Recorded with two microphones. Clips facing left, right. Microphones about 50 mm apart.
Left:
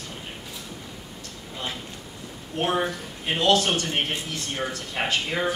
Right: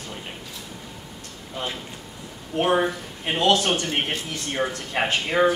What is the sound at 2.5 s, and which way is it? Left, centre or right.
Speech, centre.